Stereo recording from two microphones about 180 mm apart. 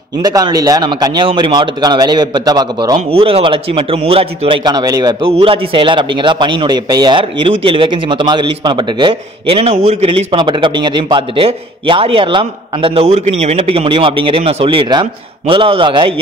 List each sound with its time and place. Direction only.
0.2 s a man's voice: 20° right (ahead or behind)